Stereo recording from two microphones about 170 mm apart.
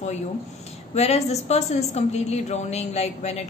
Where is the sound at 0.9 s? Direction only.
40° left (ahead or behind).